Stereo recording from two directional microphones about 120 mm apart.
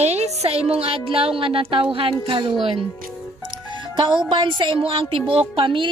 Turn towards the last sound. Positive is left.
turn(degrees=-45)  # may be behind; listen again after turning